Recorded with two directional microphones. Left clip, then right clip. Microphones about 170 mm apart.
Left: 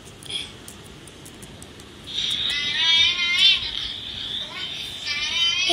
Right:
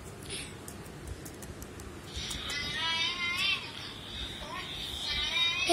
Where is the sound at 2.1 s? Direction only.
35° left (ahead or behind); by 3.5 s 20° left (ahead or behind).